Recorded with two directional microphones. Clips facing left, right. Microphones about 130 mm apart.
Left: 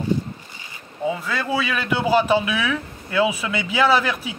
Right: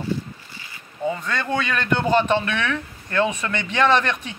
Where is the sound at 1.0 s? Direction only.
5° left (ahead or behind).